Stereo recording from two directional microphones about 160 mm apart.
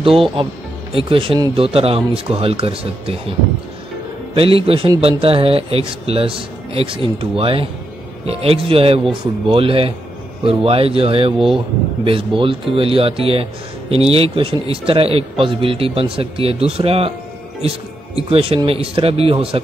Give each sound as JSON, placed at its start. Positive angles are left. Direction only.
{"t": 0.0, "sound": "speech", "side_deg": -35}
{"t": 4.4, "sound": "speech", "side_deg": -35}
{"t": 11.3, "sound": "speech", "side_deg": -5}
{"t": 12.0, "sound": "speech", "side_deg": -35}
{"t": 18.3, "sound": "speech", "side_deg": -35}